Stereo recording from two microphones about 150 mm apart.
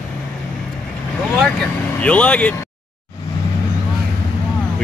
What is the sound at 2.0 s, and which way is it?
Speech, 10° left (ahead or behind).